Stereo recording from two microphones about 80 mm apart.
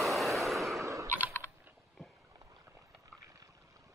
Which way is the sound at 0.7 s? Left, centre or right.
Right.